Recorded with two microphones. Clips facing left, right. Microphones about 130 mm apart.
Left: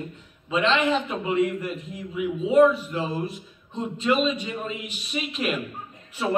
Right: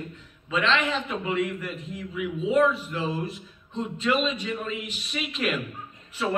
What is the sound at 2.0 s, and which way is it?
Speech, 10° left (ahead or behind).